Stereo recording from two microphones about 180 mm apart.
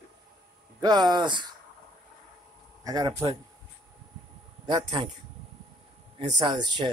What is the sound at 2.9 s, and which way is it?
Speech, 20° right (ahead or behind).